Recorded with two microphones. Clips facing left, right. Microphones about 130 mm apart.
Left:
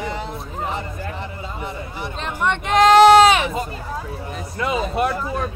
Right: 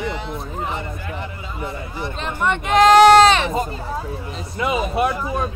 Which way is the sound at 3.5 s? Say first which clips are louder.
Right 3 dB; 35° right (ahead or behind).